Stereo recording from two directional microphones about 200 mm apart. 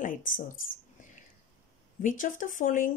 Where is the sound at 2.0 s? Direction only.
40° left (ahead or behind).